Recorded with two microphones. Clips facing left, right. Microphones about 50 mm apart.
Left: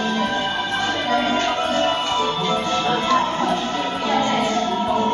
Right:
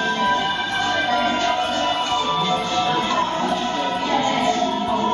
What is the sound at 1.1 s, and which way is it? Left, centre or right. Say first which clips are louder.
Music: even; left.